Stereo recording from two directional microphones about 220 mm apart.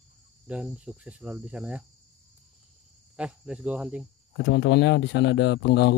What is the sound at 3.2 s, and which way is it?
Cricket, 5° right (ahead or behind).